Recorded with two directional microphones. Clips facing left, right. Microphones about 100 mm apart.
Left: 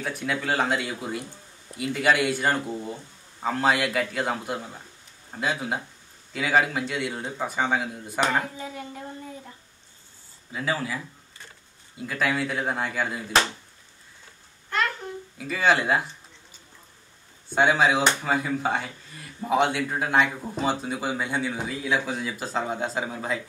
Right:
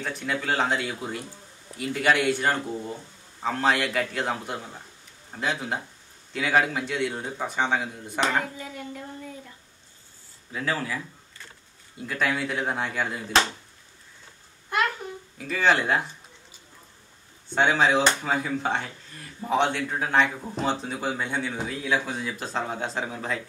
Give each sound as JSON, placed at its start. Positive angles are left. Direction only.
{"t": 0.0, "sound": "speech", "side_deg": 5}
{"t": 8.4, "sound": "a woman's voice", "side_deg": 25}
{"t": 10.5, "sound": "speech", "side_deg": 10}
{"t": 12.1, "sound": "speech", "side_deg": 0}
{"t": 15.3, "sound": "speech", "side_deg": 5}
{"t": 17.6, "sound": "speech", "side_deg": 5}